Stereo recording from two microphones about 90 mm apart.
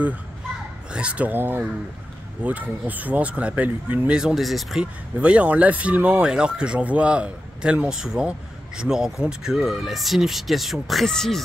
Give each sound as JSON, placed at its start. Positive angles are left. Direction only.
{"t": 0.9, "sound": "speech", "side_deg": -15}
{"t": 4.2, "sound": "speech", "side_deg": -5}
{"t": 5.2, "sound": "speech", "side_deg": -15}